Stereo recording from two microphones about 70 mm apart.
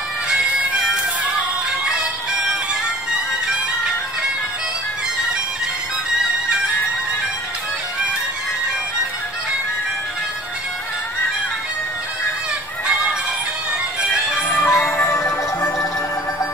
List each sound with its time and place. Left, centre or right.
0.5 s music: right
14.7 s music: left
15.1 s music: left